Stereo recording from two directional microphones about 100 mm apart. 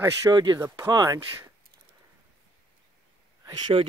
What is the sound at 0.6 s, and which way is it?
Speech, 35° right (ahead or behind).